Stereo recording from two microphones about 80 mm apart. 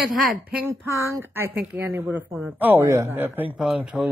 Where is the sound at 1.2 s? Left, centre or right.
Right.